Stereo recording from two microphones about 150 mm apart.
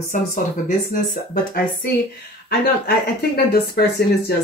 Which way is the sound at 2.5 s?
90° left.